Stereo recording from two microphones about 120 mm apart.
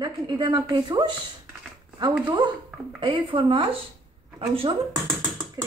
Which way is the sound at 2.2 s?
40° right (ahead or behind).